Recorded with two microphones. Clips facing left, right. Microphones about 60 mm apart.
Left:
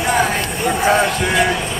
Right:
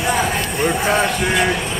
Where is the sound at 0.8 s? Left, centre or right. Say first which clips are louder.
Left 2 dB; centre.